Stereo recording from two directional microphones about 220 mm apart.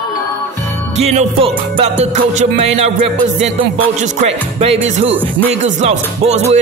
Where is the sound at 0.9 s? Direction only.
30° right (ahead or behind).